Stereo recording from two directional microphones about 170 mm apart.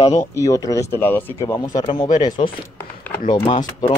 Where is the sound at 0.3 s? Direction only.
20° left (ahead or behind).